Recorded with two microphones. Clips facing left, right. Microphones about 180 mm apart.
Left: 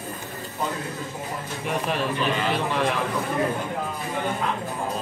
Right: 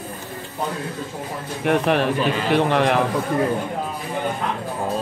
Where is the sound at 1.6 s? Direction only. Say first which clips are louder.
Right 8 dB; 65° right (ahead or behind).